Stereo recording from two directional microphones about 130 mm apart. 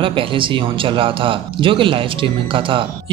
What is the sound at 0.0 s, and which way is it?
A man's voice, 40° right (ahead or behind).